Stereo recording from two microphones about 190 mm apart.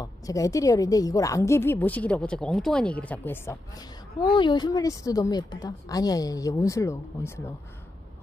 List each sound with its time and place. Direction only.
0.0 s a woman's voice: 15° left (ahead or behind)
4.2 s speech: 25° left (ahead or behind)